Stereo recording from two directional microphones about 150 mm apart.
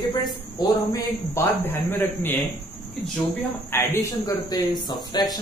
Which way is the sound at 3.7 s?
15° left (ahead or behind).